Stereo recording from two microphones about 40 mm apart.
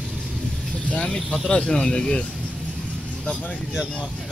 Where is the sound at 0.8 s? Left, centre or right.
Left.